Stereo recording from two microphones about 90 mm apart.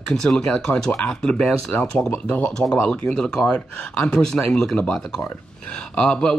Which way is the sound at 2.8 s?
5° left (ahead or behind).